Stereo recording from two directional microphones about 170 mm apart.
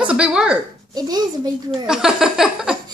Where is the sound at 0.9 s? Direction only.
25° right (ahead or behind).